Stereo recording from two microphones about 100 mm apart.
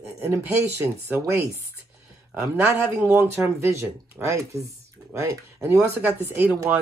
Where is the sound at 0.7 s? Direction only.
25° right (ahead or behind).